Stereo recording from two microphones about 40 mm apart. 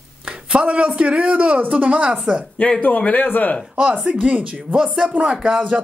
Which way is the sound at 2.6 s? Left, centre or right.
Left.